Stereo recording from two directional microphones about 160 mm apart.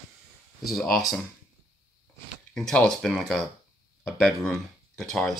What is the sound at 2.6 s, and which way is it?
Speech, 5° left (ahead or behind).